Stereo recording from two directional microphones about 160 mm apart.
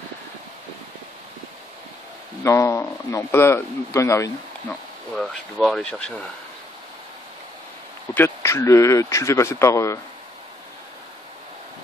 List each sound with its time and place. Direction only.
2.4 s speech: 20° left (ahead or behind)
5.1 s speech: centre (ahead or behind)
8.1 s speech: 15° left (ahead or behind)